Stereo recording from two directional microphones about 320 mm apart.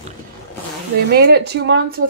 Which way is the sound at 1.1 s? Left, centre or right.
Right.